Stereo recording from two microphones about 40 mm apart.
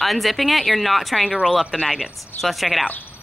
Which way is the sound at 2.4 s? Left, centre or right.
Centre.